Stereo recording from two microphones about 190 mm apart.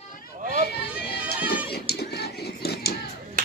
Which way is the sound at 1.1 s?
10° right (ahead or behind).